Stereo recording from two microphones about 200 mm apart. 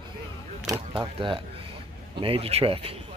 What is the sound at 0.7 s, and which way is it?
Speech, 25° right (ahead or behind).